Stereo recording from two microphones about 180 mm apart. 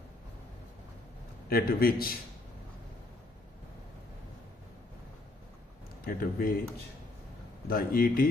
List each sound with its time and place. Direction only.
1.5 s speech: 55° left (ahead or behind)
6.0 s speech: 55° left (ahead or behind)
7.6 s speech: 55° left (ahead or behind)